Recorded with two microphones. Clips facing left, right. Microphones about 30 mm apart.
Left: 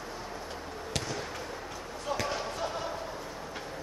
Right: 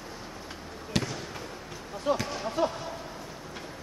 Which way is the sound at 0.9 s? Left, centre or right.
Centre.